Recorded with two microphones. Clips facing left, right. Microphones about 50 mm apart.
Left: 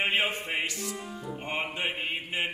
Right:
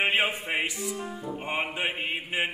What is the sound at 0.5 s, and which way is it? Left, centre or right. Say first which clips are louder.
Music: right 3 dB; centre.